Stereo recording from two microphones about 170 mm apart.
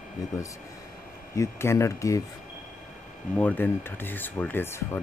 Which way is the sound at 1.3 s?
15° left (ahead or behind).